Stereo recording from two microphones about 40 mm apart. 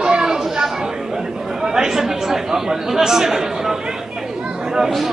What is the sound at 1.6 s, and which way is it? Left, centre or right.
Speech, centre.